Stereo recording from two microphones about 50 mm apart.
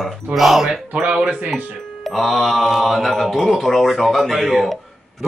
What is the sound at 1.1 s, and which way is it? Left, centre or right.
Speech, right.